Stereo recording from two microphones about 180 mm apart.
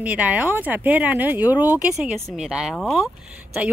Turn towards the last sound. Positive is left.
turn(degrees=-5)  # may be behind; listen again after turning